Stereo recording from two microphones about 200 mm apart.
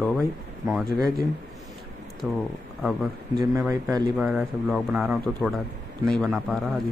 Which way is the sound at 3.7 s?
15° right (ahead or behind).